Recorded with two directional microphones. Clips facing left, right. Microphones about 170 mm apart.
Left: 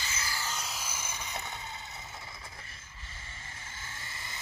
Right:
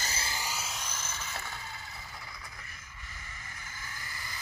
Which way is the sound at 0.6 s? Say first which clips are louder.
Even; centre (ahead or behind).